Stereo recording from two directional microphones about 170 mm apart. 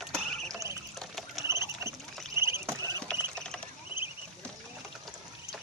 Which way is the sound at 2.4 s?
15° right (ahead or behind).